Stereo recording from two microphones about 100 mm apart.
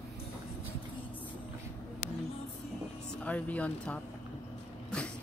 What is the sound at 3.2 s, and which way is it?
Speech, 15° left (ahead or behind).